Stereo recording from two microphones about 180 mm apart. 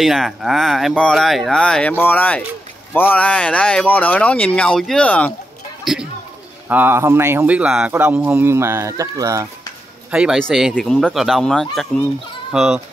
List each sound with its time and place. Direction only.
0.0 s speech: centre (ahead or behind)
6.7 s speech: 10° right (ahead or behind)
10.1 s speech: 5° right (ahead or behind)